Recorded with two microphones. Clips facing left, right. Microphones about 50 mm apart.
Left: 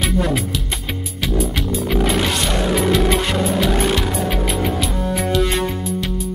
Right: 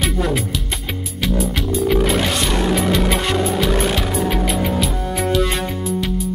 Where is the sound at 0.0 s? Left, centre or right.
Centre.